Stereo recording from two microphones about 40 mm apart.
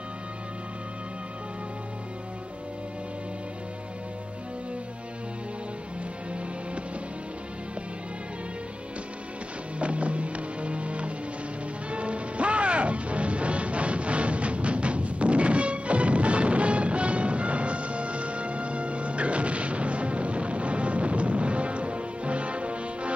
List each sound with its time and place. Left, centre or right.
9.8 s music: right